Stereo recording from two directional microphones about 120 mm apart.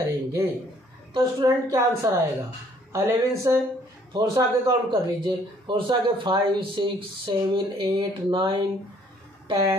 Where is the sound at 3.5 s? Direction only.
25° right (ahead or behind).